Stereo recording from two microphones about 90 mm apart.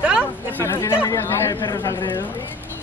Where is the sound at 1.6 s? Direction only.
45° left (ahead or behind).